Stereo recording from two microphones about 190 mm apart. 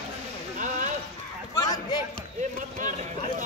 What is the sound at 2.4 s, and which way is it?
Run, 40° right (ahead or behind).